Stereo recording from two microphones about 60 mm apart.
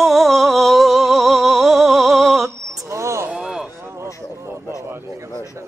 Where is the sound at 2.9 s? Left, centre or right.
Right.